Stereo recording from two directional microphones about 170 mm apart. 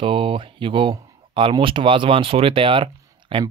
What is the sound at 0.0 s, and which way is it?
Speech, 30° right (ahead or behind).